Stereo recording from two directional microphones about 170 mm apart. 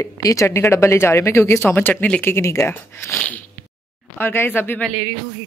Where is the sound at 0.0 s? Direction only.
20° left (ahead or behind).